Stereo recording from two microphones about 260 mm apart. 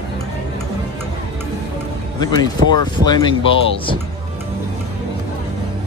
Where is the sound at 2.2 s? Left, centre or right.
Centre.